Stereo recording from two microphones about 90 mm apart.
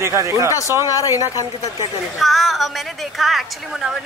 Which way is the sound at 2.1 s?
Centre (ahead or behind).